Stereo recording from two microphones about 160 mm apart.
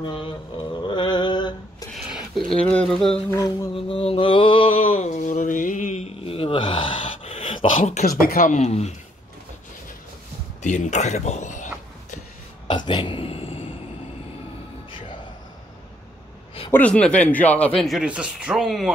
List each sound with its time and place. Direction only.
0.0 s a sound: 30° left (ahead or behind)
2.0 s speech: centre (ahead or behind)
3.3 s music: 20° left (ahead or behind)
3.7 s mantra: 35° left (ahead or behind)
8.0 s speech: 65° left (ahead or behind)
8.5 s speech: 40° left (ahead or behind)
10.6 s a sound: 50° left (ahead or behind)
12.6 s a sound: 30° left (ahead or behind)
16.7 s speech: 5° left (ahead or behind)
17.8 s speech: 5° right (ahead or behind)